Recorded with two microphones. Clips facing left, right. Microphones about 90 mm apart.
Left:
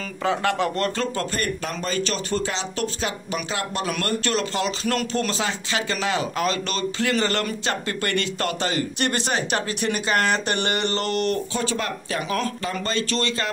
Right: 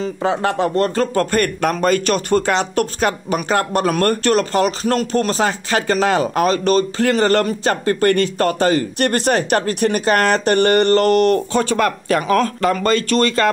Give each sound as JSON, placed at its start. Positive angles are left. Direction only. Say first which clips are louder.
{"t": 0.2, "sound": "speech", "louder": "right 3 dB", "side_deg": -30}
{"t": 1.1, "sound": "speech", "louder": "right 9 dB", "side_deg": -65}